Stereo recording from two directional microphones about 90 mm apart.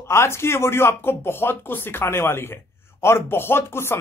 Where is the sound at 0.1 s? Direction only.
30° left (ahead or behind).